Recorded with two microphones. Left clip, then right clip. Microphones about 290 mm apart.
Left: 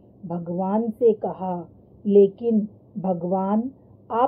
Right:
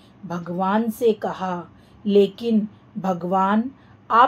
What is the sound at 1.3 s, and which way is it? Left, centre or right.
Speech, right.